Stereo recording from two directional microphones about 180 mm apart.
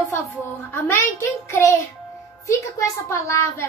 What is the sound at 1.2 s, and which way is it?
A woman's voice, 15° left (ahead or behind).